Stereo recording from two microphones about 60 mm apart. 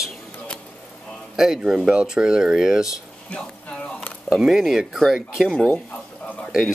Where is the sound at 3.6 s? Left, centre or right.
Left.